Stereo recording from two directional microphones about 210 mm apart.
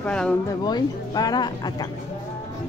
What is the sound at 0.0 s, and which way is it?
Speech, 5° left (ahead or behind).